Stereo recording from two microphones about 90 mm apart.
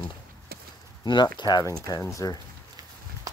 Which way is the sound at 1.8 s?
40° left (ahead or behind).